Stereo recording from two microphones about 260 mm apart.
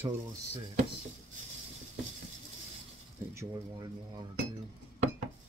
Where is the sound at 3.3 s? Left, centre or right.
Centre.